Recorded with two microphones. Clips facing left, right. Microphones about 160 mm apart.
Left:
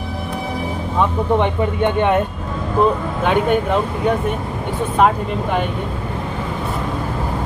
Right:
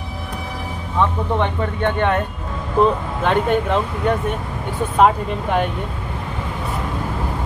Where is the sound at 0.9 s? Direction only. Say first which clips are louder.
Left 2 dB; 15° left (ahead or behind).